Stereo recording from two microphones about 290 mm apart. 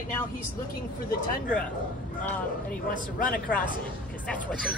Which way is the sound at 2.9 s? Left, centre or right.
Left.